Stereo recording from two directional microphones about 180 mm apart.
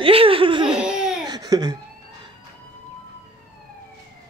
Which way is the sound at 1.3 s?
20° right (ahead or behind).